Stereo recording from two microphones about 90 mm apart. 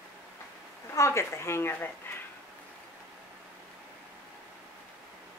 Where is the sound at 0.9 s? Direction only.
35° left (ahead or behind).